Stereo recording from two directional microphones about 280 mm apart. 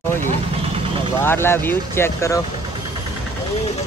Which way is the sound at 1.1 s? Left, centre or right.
Centre.